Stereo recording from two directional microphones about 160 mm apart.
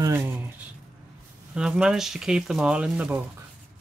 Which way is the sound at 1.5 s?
5° right (ahead or behind).